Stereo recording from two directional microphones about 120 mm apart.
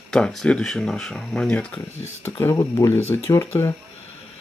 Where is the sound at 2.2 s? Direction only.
20° left (ahead or behind).